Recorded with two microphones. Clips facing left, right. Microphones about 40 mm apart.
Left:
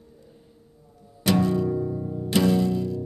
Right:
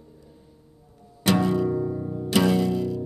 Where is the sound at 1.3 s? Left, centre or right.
Right.